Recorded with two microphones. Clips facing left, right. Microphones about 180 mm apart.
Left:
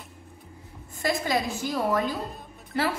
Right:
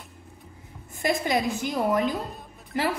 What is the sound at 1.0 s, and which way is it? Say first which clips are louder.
A woman's voice: right 1 dB; 20° right (ahead or behind).